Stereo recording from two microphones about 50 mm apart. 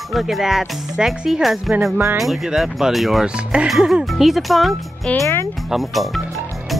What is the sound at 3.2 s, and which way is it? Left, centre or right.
Speech, centre.